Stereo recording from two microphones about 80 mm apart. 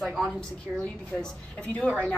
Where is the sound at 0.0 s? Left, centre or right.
Centre.